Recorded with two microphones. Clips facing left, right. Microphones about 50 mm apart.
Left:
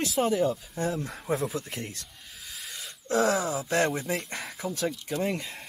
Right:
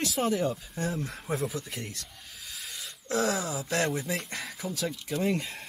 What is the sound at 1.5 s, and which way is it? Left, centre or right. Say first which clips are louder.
Speech: left 2 dB; left.